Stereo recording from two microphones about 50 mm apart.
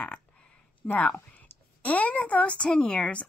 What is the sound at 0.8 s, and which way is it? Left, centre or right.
Speech, left.